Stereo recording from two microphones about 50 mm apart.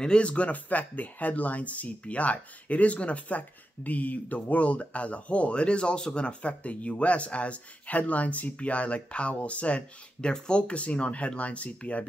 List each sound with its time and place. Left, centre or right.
0.0 s speech: left